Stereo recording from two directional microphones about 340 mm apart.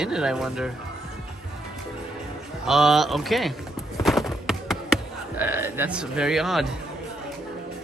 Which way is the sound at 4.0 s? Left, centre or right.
Centre.